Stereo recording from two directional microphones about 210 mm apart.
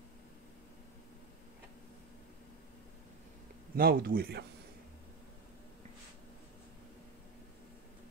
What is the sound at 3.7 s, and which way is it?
Speech, 45° right (ahead or behind).